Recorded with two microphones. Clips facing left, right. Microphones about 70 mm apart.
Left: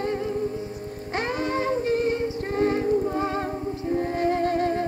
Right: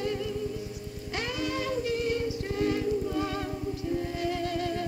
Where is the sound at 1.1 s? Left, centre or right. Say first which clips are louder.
Left 6 dB; left.